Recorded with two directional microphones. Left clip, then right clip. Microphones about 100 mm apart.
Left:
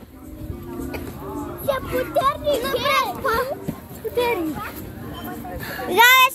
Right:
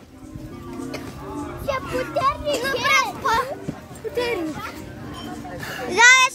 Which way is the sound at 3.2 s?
80° right.